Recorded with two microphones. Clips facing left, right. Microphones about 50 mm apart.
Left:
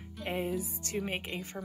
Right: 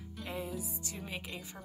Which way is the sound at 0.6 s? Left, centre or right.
Left.